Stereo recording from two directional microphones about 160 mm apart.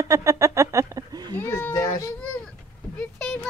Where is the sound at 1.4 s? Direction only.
15° left (ahead or behind).